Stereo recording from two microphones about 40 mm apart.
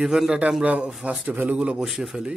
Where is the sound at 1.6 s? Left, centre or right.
Right.